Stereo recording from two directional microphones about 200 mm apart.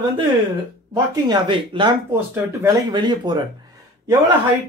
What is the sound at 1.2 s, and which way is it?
Speech, 20° right (ahead or behind).